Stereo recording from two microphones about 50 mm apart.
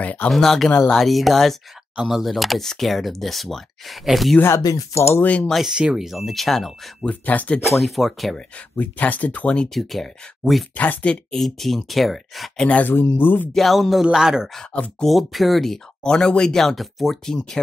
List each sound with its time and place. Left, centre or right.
0.0 s speech: left
0.3 s speech: centre
4.4 s speech: left
5.2 s speech: left
5.5 s speech: centre
7.1 s speech: left
7.6 s speech: centre
8.7 s speech: left
9.8 s speech: centre
10.8 s speech: left
11.3 s speech: centre
12.8 s speech: left
13.5 s speech: centre
16.0 s speech: centre